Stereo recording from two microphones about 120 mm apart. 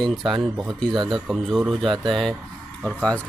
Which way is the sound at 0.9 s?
40° right (ahead or behind).